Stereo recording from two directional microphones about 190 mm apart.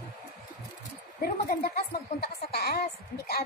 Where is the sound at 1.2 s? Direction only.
50° left (ahead or behind).